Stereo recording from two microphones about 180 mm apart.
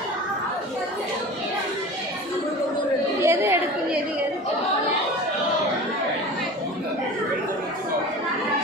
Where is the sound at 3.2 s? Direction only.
15° right (ahead or behind).